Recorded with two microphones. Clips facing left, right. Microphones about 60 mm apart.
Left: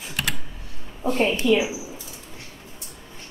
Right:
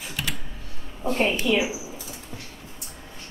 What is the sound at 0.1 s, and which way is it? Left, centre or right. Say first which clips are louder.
Computer keyboard: left 4 dB; left.